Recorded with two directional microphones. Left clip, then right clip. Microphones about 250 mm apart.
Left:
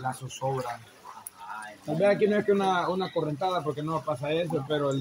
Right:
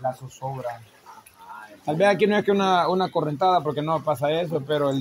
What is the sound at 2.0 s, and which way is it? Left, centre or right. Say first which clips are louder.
Speech: right 4 dB; right.